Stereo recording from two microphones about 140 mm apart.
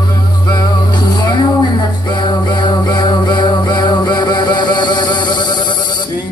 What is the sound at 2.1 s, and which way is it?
Music, 35° left (ahead or behind).